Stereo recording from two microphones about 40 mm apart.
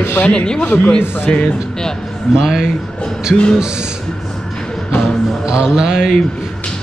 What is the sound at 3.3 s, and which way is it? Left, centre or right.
Speech, left.